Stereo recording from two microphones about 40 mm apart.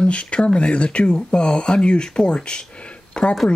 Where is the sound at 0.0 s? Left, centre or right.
Left.